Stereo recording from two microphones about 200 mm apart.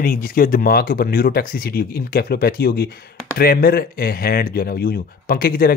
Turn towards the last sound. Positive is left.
turn(degrees=45)  # may be behind; listen again after turning